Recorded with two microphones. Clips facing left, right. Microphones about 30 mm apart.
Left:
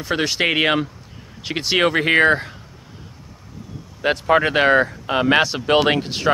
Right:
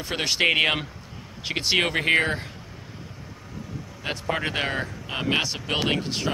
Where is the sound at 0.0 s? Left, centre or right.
Centre.